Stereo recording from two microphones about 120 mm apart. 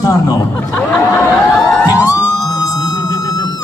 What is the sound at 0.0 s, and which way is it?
Speech, 30° left (ahead or behind).